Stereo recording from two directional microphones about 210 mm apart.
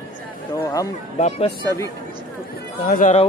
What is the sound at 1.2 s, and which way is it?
Speech, 30° left (ahead or behind).